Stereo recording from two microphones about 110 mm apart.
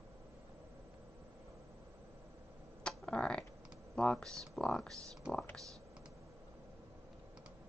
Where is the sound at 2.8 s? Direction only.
10° left (ahead or behind).